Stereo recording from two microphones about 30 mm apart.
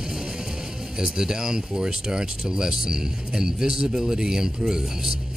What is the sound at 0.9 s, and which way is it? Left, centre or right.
Speech, right.